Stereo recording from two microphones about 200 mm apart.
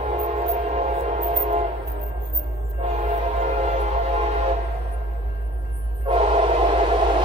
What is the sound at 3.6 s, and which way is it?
Music, 35° right (ahead or behind).